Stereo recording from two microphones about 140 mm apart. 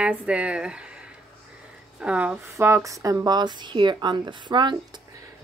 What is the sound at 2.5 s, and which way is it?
Speech, 20° right (ahead or behind).